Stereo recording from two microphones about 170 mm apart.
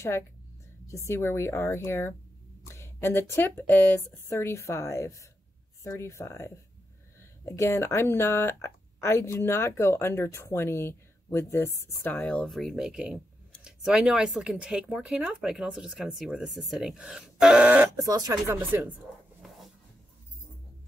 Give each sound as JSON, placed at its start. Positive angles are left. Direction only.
{"t": 0.8, "sound": "speech", "side_deg": 15}
{"t": 17.9, "sound": "speech", "side_deg": -20}
{"t": 18.6, "sound": "speech", "side_deg": -10}